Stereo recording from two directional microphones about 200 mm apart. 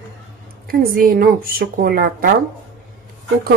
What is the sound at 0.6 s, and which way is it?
A woman's voice, 45° right (ahead or behind).